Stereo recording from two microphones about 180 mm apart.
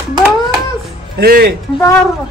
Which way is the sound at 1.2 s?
60° right (ahead or behind).